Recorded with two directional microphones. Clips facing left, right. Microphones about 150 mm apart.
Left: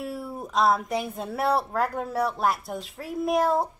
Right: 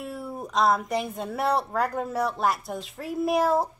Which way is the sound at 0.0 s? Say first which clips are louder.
Left 1 dB; centre (ahead or behind).